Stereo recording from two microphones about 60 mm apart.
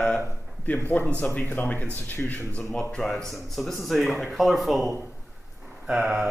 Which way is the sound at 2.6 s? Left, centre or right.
Centre.